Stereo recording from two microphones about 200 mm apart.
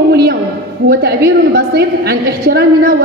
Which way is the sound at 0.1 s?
50° right (ahead or behind).